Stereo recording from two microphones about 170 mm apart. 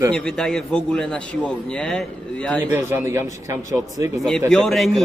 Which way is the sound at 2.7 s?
15° right (ahead or behind).